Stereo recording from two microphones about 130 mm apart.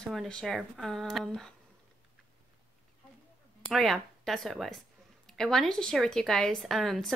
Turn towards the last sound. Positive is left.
turn(degrees=0)  # may be behind; listen again after turning